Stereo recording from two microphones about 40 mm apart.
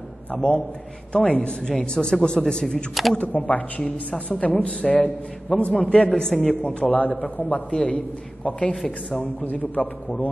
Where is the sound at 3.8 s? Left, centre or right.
Left.